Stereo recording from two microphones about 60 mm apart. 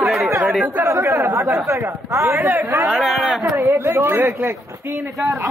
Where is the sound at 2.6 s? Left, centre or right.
Right.